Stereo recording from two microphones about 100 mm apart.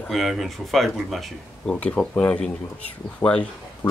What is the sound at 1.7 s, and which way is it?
Speech, 10° left (ahead or behind).